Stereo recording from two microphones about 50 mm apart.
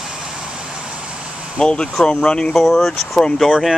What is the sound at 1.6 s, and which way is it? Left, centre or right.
Speech, centre.